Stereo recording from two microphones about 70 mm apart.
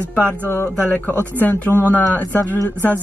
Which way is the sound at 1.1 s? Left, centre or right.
Right.